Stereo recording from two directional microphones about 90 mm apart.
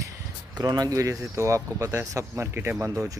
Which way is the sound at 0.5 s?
45° right (ahead or behind).